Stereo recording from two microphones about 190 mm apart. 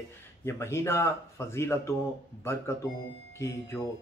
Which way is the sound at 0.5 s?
15° left (ahead or behind).